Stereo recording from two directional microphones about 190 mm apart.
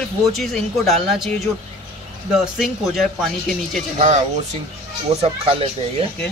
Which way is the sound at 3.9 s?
35° right (ahead or behind).